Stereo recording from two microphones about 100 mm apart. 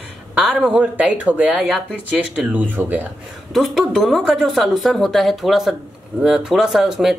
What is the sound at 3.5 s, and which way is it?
Speech, centre (ahead or behind).